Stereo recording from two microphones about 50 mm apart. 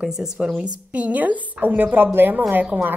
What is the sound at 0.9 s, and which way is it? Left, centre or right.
A woman's voice, right.